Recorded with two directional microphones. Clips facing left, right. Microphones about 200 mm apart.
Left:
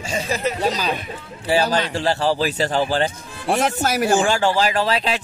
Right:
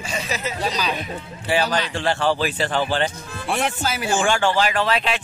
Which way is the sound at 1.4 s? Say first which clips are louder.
Left 3 dB; 35° left (ahead or behind).